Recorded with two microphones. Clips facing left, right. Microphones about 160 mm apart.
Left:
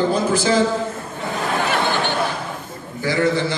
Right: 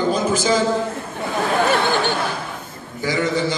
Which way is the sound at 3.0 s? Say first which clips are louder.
Left 1 dB; 15° right (ahead or behind).